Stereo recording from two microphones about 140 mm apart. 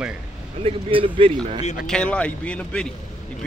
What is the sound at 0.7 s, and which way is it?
Speech, 40° right (ahead or behind).